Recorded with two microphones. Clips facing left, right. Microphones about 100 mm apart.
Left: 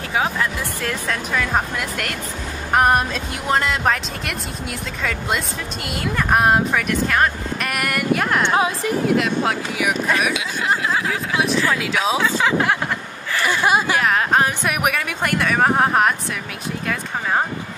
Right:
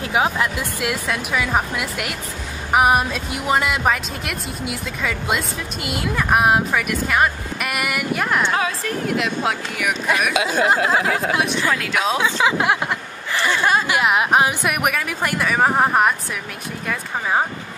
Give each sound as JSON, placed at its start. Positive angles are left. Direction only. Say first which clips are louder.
{"t": 0.1, "sound": "speech", "louder": "right 1 dB", "side_deg": -15}
{"t": 8.5, "sound": "a woman's voice", "louder": "left 3 dB", "side_deg": 20}
{"t": 9.0, "sound": "speech", "louder": "left 2 dB", "side_deg": 0}
{"t": 10.3, "sound": "speech", "louder": "right 4 dB", "side_deg": -40}
{"t": 11.3, "sound": "speech", "louder": "left 1 dB", "side_deg": 0}
{"t": 12.4, "sound": "speech", "louder": "right 1 dB", "side_deg": -10}
{"t": 13.5, "sound": "speech", "louder": "left 1 dB", "side_deg": 10}
{"t": 13.8, "sound": "speech", "louder": "right 1 dB", "side_deg": -15}
{"t": 14.7, "sound": "speech", "louder": "even", "side_deg": 0}